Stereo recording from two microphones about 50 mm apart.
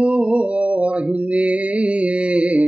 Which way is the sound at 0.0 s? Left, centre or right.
Right.